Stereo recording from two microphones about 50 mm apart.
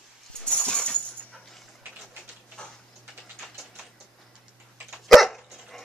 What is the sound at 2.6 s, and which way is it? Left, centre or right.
Tick-tock, centre.